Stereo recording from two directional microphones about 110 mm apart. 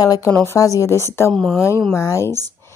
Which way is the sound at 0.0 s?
35° left (ahead or behind).